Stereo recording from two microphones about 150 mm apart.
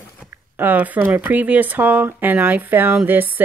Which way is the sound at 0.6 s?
10° right (ahead or behind).